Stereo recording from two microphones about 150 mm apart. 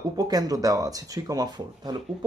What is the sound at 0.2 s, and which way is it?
Speech, 25° right (ahead or behind).